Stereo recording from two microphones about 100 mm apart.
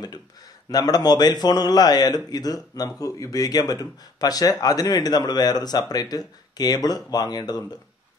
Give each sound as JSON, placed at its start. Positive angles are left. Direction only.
{"t": 0.7, "sound": "speech", "side_deg": 40}